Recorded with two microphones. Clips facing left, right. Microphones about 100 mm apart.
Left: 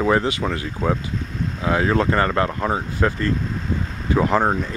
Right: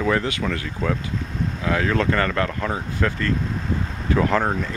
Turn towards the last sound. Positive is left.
turn(degrees=20)  # may be behind; listen again after turning